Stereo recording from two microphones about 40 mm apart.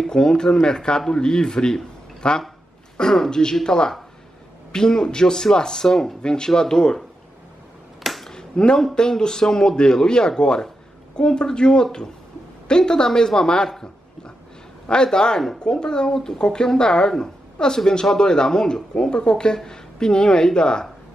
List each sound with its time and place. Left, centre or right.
0.1 s speech: centre
3.0 s speech: centre
8.0 s finger snapping: centre
8.3 s a sound: centre
8.9 s speech: centre
14.9 s speech: centre